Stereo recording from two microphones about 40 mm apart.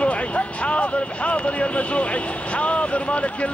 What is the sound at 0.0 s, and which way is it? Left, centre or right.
Speech, left.